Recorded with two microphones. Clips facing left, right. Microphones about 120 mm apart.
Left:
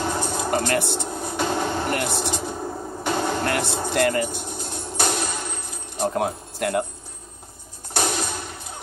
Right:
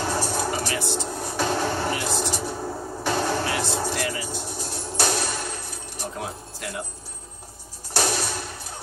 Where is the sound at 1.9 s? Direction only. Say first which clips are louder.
Left 2 dB; 55° left (ahead or behind).